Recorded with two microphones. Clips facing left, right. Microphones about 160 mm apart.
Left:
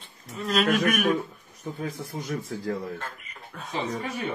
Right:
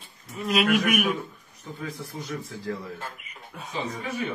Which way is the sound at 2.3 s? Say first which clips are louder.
Left 3 dB; 50° left (ahead or behind).